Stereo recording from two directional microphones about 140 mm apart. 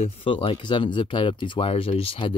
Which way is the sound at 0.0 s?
45° left (ahead or behind).